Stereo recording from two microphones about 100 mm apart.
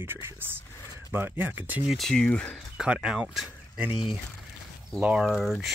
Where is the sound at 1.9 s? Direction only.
5° left (ahead or behind).